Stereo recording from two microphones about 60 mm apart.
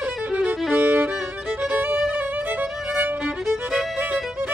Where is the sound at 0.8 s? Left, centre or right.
Right.